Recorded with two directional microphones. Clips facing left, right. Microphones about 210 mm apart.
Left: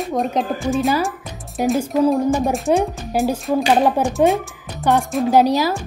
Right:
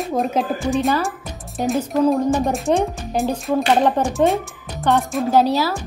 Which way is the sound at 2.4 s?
Centre (ahead or behind).